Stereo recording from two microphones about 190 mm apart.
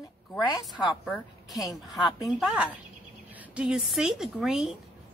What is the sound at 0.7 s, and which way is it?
Speech, centre (ahead or behind).